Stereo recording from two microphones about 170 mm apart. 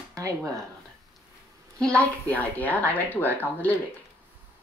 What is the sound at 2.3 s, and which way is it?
Speech, 10° left (ahead or behind).